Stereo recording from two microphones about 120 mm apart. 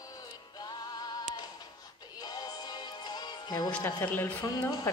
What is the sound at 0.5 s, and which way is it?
Music, 35° left (ahead or behind).